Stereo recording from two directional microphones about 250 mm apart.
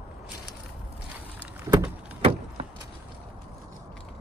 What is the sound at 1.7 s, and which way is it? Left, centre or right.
Door, centre.